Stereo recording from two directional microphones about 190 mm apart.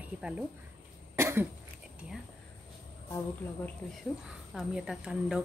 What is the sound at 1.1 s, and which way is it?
Cough, 15° right (ahead or behind).